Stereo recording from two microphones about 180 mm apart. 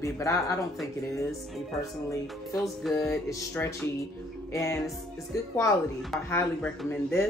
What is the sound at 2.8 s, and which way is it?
Music, centre (ahead or behind).